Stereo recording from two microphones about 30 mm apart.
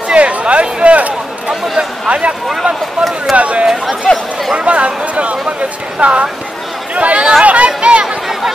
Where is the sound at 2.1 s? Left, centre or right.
Right.